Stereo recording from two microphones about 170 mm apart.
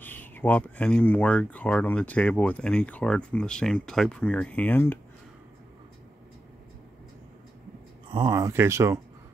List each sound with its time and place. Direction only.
0.0 s speech: 10° left (ahead or behind)
8.1 s speech: 25° right (ahead or behind)